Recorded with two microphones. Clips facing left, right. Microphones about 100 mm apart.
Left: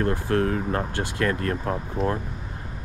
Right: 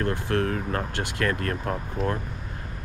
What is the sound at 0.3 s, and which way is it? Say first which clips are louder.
Speech: left 3 dB; 30° left (ahead or behind).